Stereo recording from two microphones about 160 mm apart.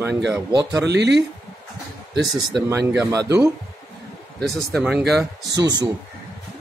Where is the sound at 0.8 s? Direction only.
90° right.